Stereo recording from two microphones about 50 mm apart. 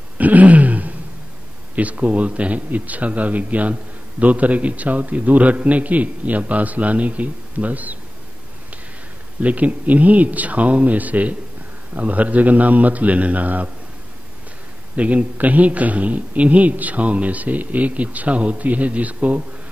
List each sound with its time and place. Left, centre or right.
0.2 s throat clearing: right
1.8 s a man's voice: right
9.4 s a man's voice: right
15.0 s a man's voice: right